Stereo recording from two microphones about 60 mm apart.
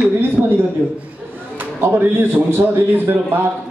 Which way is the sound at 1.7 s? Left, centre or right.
Right.